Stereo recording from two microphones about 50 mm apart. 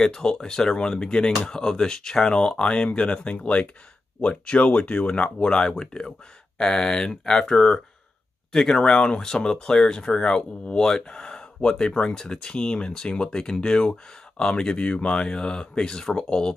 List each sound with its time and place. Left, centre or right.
0.0 s speech: centre